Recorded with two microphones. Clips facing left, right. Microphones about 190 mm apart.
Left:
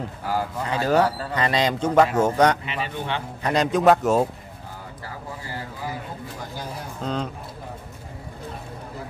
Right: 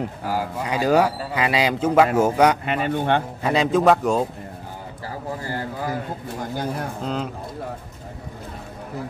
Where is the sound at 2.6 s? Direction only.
55° right (ahead or behind).